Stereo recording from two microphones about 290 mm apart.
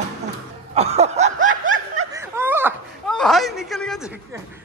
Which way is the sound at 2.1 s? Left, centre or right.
Centre.